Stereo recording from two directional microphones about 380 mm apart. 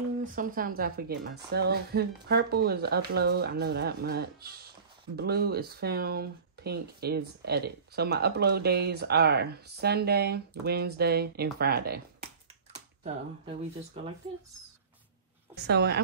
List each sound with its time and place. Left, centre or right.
0.4 s speech: right
15.5 s speech: right